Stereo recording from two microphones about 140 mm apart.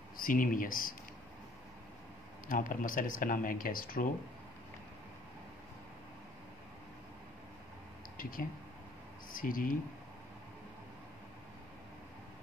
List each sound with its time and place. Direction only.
0.2 s speech: 80° left
2.4 s speech: 75° left (ahead or behind); by 4.1 s 90° left
8.2 s speech: 85° left